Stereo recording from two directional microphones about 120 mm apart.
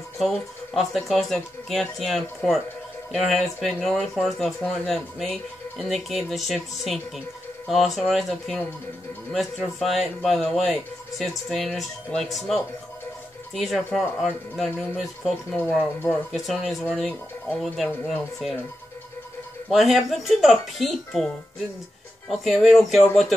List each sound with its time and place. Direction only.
0.2 s speech: centre (ahead or behind)
19.7 s speech: centre (ahead or behind)
22.3 s speech: centre (ahead or behind)